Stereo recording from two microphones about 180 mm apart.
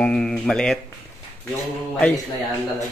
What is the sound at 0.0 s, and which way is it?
Speech, 5° left (ahead or behind).